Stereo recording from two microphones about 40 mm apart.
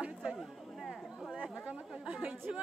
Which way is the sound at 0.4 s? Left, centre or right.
Centre.